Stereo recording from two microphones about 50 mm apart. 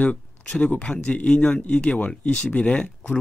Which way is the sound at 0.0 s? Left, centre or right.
Left.